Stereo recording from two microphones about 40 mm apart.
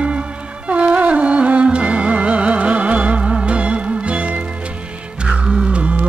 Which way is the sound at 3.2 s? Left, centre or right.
Centre.